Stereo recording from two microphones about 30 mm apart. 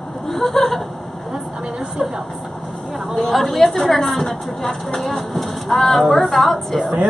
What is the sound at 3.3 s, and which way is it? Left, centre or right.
A woman's voice, centre.